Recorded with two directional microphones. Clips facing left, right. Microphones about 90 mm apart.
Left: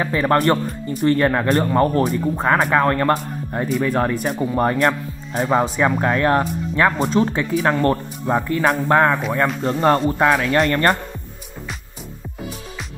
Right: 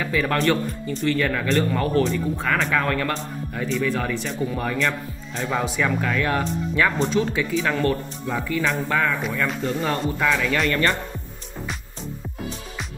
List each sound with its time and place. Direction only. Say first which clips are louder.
0.0 s speech: left 4 dB; 40° left (ahead or behind)
3.1 s speech: left 8 dB; 50° left (ahead or behind)
5.5 s speech: left 5 dB; 30° left (ahead or behind)